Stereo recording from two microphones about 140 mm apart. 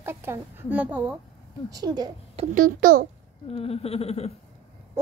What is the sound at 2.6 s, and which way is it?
Speech, 80° right.